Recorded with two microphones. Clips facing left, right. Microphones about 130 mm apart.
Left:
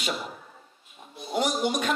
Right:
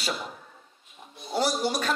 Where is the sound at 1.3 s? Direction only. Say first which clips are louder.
Even; 35° right (ahead or behind).